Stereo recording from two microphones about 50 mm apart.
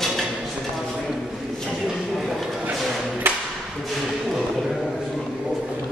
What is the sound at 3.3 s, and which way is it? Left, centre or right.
Music, right.